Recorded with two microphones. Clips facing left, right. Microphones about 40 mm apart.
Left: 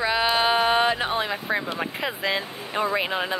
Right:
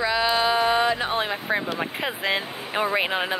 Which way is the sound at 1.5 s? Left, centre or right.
Centre.